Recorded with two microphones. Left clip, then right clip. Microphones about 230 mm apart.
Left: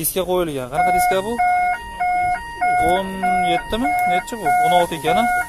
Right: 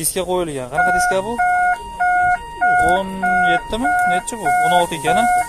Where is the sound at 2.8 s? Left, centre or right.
Centre.